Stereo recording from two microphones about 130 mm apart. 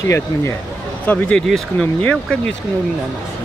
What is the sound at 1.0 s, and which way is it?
Speech, 10° left (ahead or behind).